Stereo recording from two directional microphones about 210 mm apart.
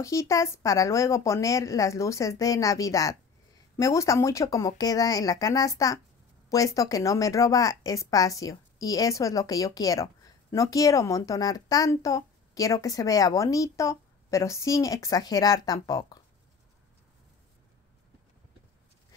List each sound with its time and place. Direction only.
0.0 s speech: 15° left (ahead or behind)